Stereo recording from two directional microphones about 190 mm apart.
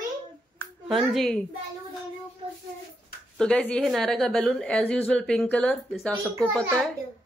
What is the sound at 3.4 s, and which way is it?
A woman's voice, 5° left (ahead or behind).